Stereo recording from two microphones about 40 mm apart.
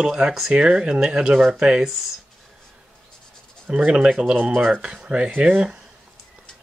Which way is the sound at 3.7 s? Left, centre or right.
Right.